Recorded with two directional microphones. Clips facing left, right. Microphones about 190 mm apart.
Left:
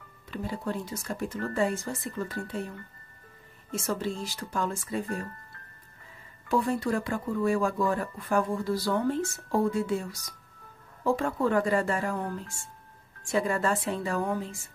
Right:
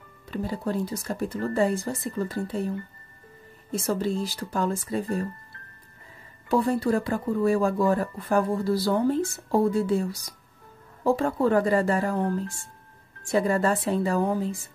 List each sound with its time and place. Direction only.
0.3 s speech: 35° right (ahead or behind)
3.7 s speech: 35° right (ahead or behind)
6.5 s speech: 35° right (ahead or behind)